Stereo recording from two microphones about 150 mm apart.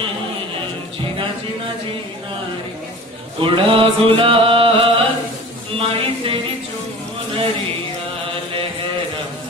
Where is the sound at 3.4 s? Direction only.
35° right (ahead or behind).